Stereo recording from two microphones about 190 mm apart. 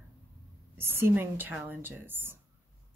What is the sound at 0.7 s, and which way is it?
Speech, 10° right (ahead or behind).